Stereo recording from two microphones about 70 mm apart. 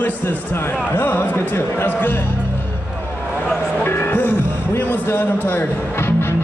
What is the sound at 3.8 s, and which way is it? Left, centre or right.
Music, left.